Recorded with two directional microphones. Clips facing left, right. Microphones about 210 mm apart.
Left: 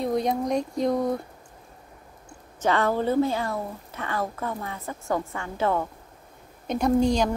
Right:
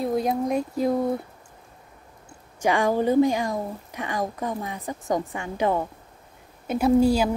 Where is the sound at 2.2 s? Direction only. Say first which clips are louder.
Right 1 dB; 10° right (ahead or behind).